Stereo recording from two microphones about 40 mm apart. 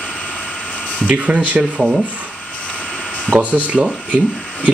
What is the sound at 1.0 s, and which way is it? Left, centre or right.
Speech, right.